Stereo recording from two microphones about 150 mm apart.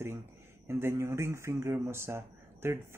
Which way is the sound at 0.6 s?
15° right (ahead or behind).